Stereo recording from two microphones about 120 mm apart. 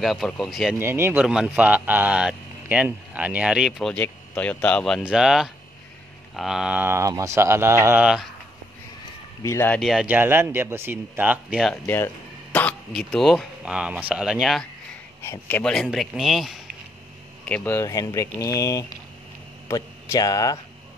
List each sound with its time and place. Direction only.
0.0 s speech: centre (ahead or behind)
0.7 s speech: 20° right (ahead or behind)
1.1 s speech: 5° right (ahead or behind)
3.9 s speech: 10° left (ahead or behind); by 8.0 s 20° right (ahead or behind)
8.0 s speech: 5° right (ahead or behind)
9.4 s speech: 25° left (ahead or behind)
9.8 s speech: centre (ahead or behind)
10.0 s speech: 15° right (ahead or behind)
11.8 s speech: 20° left (ahead or behind)
13.1 s speech: centre (ahead or behind)
15.4 s speech: 15° left (ahead or behind)
15.7 s speech: centre (ahead or behind)
17.6 s speech: 25° left (ahead or behind)